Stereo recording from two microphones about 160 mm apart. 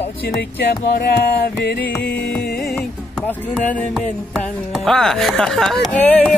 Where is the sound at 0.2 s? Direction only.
80° left.